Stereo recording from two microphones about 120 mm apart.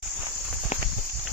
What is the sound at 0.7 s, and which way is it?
Horse, 70° left (ahead or behind).